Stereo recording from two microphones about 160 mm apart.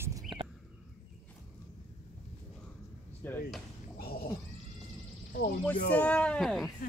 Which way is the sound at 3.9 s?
70° left (ahead or behind).